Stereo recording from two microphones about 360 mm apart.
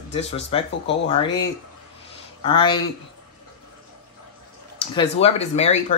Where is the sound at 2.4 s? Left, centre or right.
Centre.